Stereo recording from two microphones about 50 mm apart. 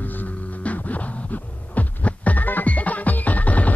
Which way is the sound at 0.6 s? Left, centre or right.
Left.